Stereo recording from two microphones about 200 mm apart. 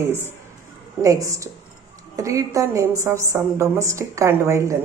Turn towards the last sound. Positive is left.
turn(degrees=-15)  # may be behind; listen again after turning